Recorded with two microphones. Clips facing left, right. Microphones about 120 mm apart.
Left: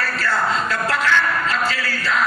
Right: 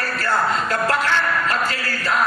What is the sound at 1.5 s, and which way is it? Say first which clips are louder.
Chant: left 1 dB; 45° right (ahead or behind).